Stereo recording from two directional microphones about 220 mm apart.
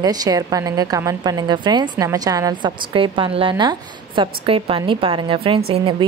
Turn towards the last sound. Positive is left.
turn(degrees=-25)  # may be behind; listen again after turning